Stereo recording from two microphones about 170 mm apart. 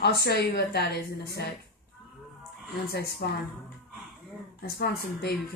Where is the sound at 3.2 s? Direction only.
60° left (ahead or behind).